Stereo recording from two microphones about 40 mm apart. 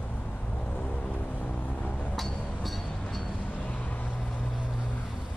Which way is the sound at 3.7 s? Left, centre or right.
Left.